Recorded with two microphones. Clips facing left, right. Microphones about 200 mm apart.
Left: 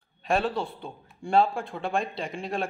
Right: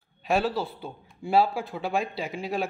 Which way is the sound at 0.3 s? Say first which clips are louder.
Right 1 dB; centre (ahead or behind).